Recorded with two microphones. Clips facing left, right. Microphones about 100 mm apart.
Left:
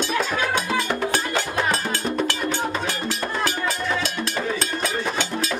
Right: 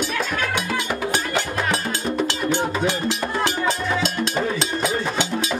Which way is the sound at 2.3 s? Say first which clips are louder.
Right 2 dB; 20° right (ahead or behind).